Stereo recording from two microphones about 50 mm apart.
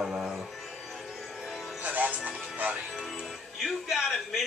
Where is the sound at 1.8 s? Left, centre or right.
Right.